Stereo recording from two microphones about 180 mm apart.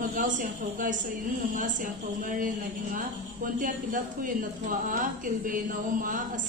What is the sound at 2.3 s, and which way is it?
A woman's voice, 50° right (ahead or behind).